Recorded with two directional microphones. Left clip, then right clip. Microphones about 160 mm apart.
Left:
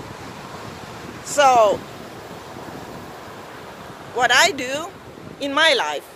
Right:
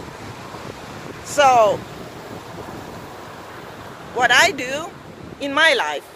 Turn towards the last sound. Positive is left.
turn(degrees=10)  # may be behind; listen again after turning